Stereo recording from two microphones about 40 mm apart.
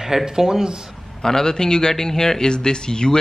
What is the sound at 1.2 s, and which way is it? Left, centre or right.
Speech, centre.